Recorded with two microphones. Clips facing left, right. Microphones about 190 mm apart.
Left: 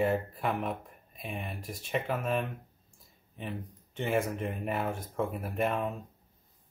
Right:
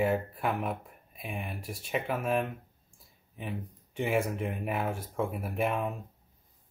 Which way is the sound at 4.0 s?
10° right (ahead or behind).